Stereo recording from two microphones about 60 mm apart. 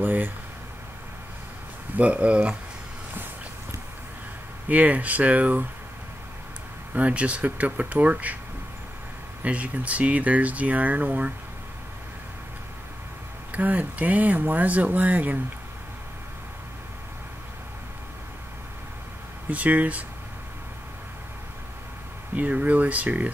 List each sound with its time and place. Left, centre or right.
0.0 s speech: right
2.0 s speech: right
4.6 s speech: right
6.9 s speech: right
9.4 s speech: right
13.5 s speech: right
19.5 s speech: right
22.3 s speech: right